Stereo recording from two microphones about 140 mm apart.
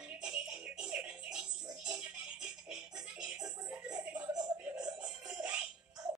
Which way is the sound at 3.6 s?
10° right (ahead or behind).